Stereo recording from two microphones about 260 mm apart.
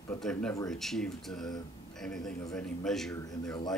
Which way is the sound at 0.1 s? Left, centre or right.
Centre.